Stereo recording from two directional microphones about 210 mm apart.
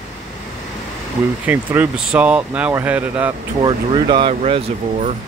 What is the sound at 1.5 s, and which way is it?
Speech, 5° right (ahead or behind).